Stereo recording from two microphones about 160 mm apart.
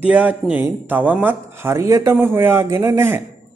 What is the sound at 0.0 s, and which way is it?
Speech, 10° right (ahead or behind).